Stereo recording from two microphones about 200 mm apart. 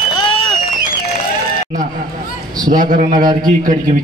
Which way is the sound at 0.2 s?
25° left (ahead or behind).